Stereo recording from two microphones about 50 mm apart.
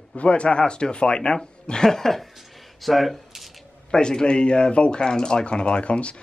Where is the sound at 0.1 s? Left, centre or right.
Left; by 2.2 s centre.